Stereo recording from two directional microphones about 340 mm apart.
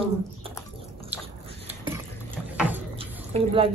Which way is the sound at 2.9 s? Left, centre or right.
Centre.